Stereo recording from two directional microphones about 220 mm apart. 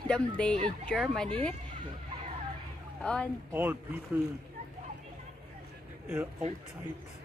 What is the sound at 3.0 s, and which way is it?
Speech, 5° left (ahead or behind).